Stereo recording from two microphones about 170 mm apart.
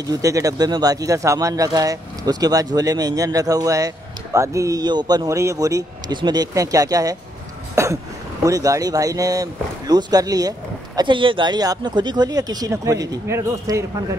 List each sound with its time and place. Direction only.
0.0 s speech: 20° right (ahead or behind)
7.7 s throat clearing: 15° right (ahead or behind)
8.5 s speech: 20° right (ahead or behind)